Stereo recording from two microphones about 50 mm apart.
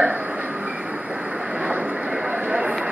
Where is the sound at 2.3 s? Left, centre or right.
Right.